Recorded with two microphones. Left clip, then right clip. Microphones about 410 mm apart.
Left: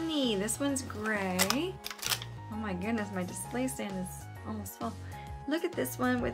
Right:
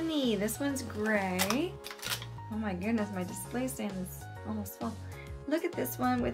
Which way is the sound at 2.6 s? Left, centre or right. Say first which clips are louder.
Right 1 dB; centre.